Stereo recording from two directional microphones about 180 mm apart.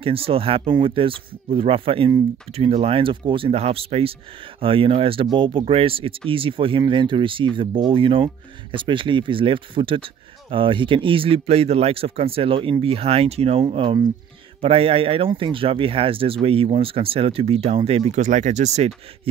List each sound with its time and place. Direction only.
0.0 s speech: 30° right (ahead or behind)